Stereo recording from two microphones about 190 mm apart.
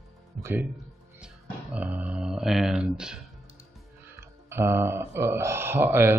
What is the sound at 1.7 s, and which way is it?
Speech, 5° right (ahead or behind).